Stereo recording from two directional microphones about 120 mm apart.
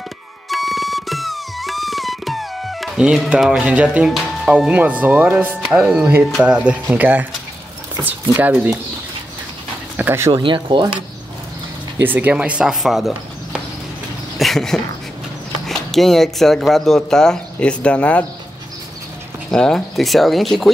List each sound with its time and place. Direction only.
0.5 s music: centre (ahead or behind)
5.9 s speech: 5° right (ahead or behind)
9.9 s speech: 20° right (ahead or behind)
10.3 s speech: 45° right (ahead or behind)
12.0 s speech: 15° right (ahead or behind); by 18.2 s 10° left (ahead or behind)
19.5 s speech: 5° left (ahead or behind)